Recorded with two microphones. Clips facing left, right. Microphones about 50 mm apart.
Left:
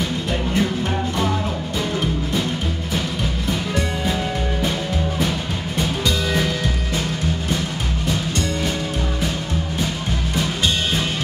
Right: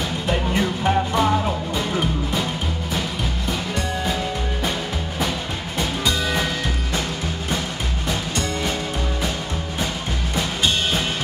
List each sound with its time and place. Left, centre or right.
0.6 s music: centre